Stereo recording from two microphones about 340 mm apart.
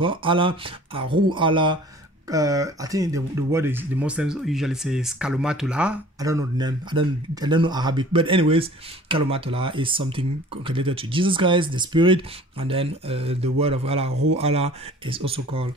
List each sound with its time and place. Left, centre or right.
0.0 s speech: centre